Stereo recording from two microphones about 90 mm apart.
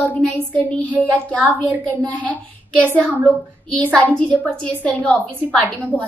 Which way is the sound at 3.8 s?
15° left (ahead or behind).